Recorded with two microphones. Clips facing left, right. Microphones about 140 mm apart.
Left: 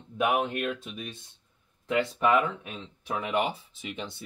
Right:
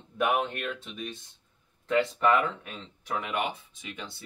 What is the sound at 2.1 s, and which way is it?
Speech, 15° left (ahead or behind).